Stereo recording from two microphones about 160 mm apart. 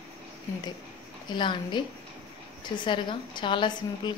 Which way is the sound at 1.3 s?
30° left (ahead or behind).